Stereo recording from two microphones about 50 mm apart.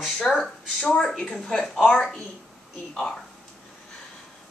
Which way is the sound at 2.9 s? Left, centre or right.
Centre.